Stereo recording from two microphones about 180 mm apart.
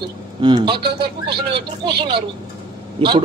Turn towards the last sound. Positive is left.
turn(degrees=-25)  # may be behind; listen again after turning